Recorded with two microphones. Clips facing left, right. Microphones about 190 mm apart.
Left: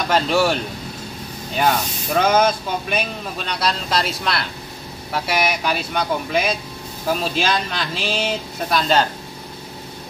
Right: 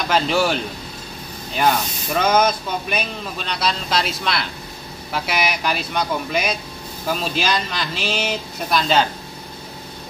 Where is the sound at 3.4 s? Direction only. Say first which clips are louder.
Left 1 dB; centre (ahead or behind).